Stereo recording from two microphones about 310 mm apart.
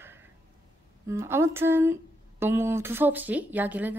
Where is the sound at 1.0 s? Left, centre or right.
Centre.